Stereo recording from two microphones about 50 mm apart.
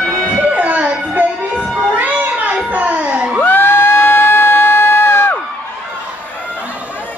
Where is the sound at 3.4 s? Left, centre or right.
Left.